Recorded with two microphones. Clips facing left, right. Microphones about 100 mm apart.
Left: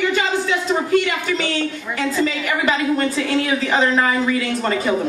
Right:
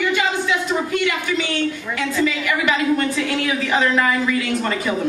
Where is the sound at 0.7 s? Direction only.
35° left (ahead or behind).